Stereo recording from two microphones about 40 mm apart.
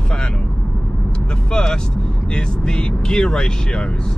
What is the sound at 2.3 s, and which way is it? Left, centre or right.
Speech, left.